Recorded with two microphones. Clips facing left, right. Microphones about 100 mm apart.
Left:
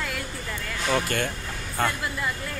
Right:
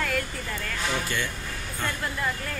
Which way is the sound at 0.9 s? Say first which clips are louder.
Left 7 dB; 50° left (ahead or behind).